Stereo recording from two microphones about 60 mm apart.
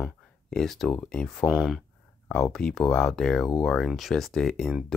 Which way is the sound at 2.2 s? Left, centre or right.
Centre.